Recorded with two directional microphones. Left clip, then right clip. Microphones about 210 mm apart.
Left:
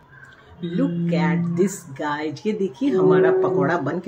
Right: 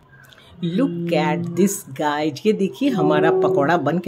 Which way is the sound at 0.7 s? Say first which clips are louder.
Right 4 dB; 55° right (ahead or behind).